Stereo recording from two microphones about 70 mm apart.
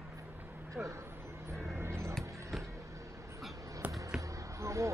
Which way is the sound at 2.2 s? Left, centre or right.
Centre.